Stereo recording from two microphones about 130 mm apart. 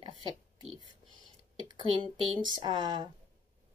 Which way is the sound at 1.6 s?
40° right (ahead or behind).